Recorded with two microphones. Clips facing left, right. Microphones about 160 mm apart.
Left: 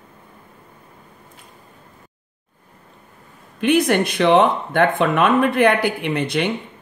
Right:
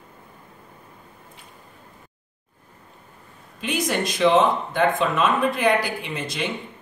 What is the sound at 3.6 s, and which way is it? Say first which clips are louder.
Speech: left 8 dB; 60° left (ahead or behind).